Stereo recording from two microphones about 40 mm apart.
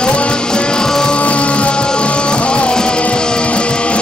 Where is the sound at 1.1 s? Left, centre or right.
Left.